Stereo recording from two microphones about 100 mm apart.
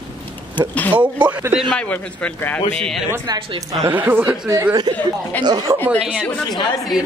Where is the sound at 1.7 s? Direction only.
10° left (ahead or behind).